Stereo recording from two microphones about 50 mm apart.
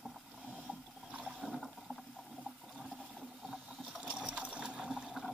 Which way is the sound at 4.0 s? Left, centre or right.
Centre.